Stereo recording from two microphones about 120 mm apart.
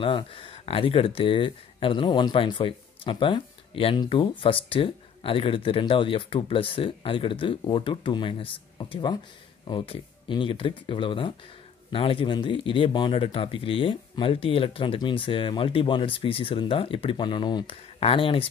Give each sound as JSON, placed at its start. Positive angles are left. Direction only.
{"t": 0.0, "sound": "speech", "side_deg": 50}